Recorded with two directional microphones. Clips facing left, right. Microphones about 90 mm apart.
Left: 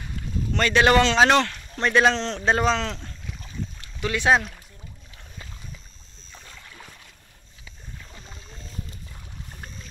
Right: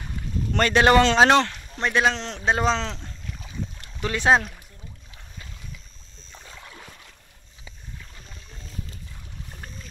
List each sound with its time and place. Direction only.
0.5 s speech: 40° right (ahead or behind)
1.8 s a man's voice: 10° right (ahead or behind)
2.6 s speech: 25° right (ahead or behind)
3.8 s speech: 35° right (ahead or behind)